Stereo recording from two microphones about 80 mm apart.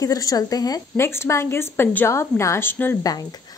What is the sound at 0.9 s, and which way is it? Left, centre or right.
Speech, left.